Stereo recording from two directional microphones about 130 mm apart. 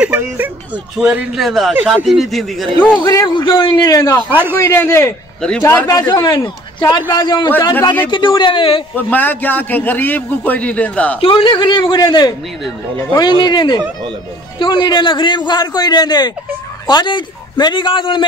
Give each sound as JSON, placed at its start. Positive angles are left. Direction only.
{"t": 0.0, "sound": "a sound", "side_deg": -10}
{"t": 0.9, "sound": "a man's voice", "side_deg": -5}
{"t": 2.9, "sound": "a man's voice", "side_deg": 30}
{"t": 4.3, "sound": "a man's voice", "side_deg": -15}
{"t": 4.6, "sound": "a man's voice", "side_deg": 20}
{"t": 8.9, "sound": "a man's voice", "side_deg": 15}
{"t": 11.1, "sound": "a man's voice", "side_deg": 45}